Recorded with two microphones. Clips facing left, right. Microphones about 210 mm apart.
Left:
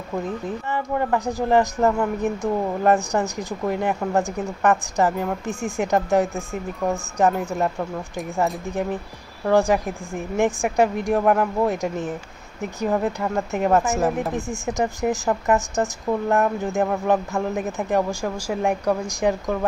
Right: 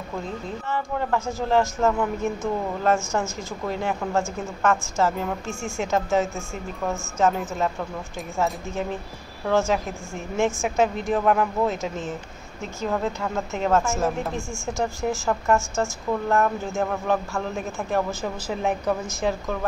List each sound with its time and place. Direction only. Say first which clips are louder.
0.5 s speech: left 3 dB; 15° left (ahead or behind)
8.6 s speech: left 3 dB; 15° left (ahead or behind)